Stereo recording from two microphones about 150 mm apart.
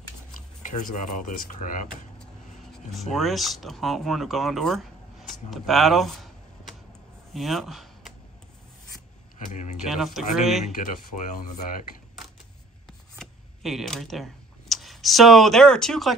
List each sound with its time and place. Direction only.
0.6 s speech: 60° left (ahead or behind)
2.9 s speech: centre (ahead or behind)
9.5 s speech: 55° left (ahead or behind)
9.8 s speech: centre (ahead or behind)
12.8 s a sound: centre (ahead or behind)